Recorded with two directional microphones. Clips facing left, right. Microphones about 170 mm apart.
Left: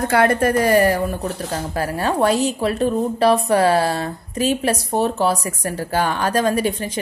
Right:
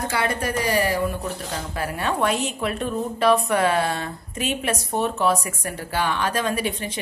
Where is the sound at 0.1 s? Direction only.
50° left (ahead or behind).